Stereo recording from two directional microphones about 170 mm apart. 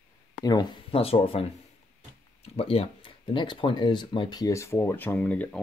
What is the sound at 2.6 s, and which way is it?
Speech, 35° left (ahead or behind).